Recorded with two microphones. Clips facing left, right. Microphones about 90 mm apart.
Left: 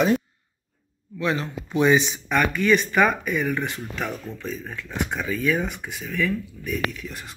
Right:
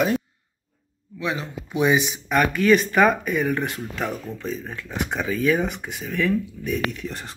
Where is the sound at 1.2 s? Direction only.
10° right (ahead or behind).